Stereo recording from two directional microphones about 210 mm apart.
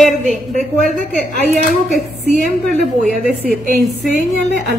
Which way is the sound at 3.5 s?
45° right (ahead or behind).